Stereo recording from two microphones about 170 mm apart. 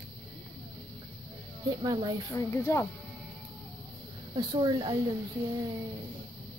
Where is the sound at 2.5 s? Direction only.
15° left (ahead or behind).